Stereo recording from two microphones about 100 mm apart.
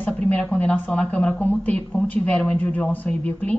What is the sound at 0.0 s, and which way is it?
A woman's voice, 15° left (ahead or behind).